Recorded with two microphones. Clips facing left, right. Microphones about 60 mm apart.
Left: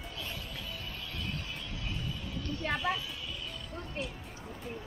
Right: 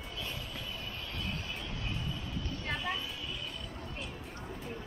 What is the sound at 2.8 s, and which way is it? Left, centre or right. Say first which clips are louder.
Speech: left 3 dB; centre.